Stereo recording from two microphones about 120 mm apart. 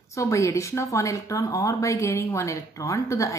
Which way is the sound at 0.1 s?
25° left (ahead or behind).